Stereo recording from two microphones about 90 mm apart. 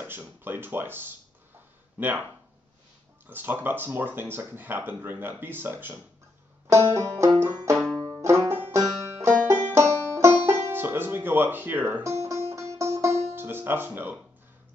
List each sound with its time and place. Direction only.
0.4 s speech: 25° right (ahead or behind)
3.3 s speech: 20° right (ahead or behind)
6.7 s banjo: 30° right (ahead or behind)
7.7 s banjo: 10° left (ahead or behind)
8.2 s banjo: 30° right (ahead or behind)
12.0 s music: 35° right (ahead or behind)